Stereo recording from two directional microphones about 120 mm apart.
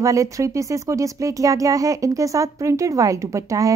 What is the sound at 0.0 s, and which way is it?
A woman's voice, 25° right (ahead or behind).